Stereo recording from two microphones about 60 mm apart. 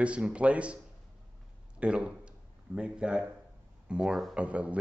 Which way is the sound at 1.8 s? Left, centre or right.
Centre.